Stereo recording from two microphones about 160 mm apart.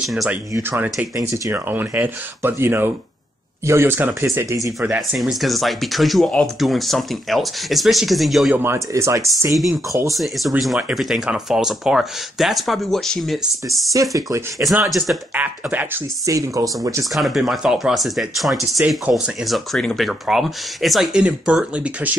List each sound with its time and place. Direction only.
0.0 s speech: centre (ahead or behind)
0.5 s speech: 15° right (ahead or behind)
4.8 s speech: 5° right (ahead or behind)
8.5 s speech: 15° right (ahead or behind)
10.1 s speech: centre (ahead or behind)
14.1 s speech: 20° right (ahead or behind)
17.1 s speech: centre (ahead or behind)